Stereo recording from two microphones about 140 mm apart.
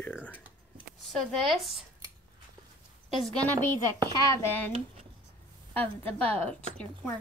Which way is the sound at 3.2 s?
5° left (ahead or behind).